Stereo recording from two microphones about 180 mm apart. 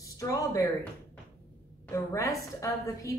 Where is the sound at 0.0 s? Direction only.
20° left (ahead or behind).